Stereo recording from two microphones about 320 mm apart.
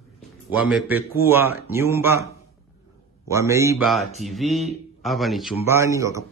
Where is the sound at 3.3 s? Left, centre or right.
Centre.